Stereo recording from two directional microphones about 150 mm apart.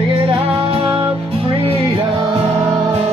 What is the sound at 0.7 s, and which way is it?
Music, 35° right (ahead or behind).